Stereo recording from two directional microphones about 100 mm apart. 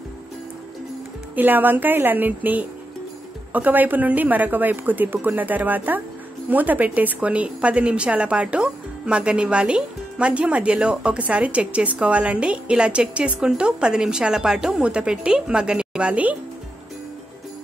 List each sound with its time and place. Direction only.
1.3 s a woman's voice: 20° right (ahead or behind)